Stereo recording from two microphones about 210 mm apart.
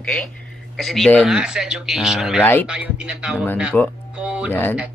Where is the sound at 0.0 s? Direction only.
5° left (ahead or behind).